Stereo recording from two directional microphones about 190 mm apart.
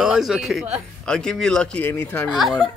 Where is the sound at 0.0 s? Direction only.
Centre (ahead or behind).